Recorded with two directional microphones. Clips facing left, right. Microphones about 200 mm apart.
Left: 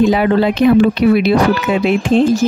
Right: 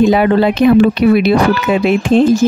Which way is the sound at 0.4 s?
55° right (ahead or behind).